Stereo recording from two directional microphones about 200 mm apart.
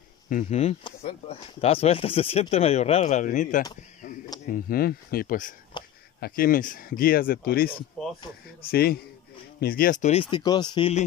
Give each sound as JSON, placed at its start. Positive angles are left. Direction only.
{"t": 0.3, "sound": "speech", "side_deg": 35}
{"t": 5.7, "sound": "a sound", "side_deg": 25}
{"t": 6.1, "sound": "speech", "side_deg": 50}
{"t": 8.0, "sound": "a sound", "side_deg": 0}
{"t": 8.6, "sound": "speech", "side_deg": 50}
{"t": 10.3, "sound": "speech", "side_deg": 20}